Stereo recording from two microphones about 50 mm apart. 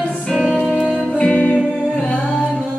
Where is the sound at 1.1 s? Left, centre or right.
Left.